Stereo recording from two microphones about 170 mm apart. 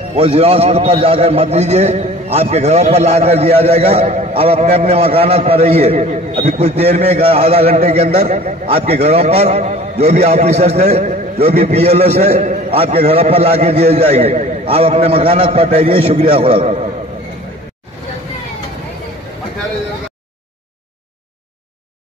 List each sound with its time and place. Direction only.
0.1 s a man's voice: 35° right (ahead or behind)